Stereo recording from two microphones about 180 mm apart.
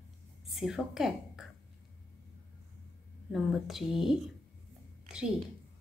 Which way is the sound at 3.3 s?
Centre (ahead or behind).